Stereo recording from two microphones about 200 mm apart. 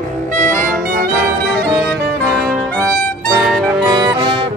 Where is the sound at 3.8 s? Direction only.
20° right (ahead or behind).